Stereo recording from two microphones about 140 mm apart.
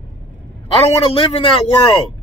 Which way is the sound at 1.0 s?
40° left (ahead or behind).